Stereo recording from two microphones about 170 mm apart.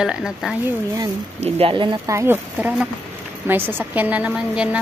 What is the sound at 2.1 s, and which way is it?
A woman's voice, 15° right (ahead or behind).